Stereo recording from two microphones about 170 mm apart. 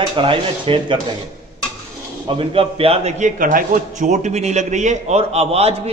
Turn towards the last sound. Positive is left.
turn(degrees=-35)  # may be behind; listen again after turning